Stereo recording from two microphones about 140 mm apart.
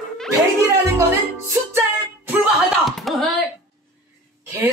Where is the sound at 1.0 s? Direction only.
20° right (ahead or behind).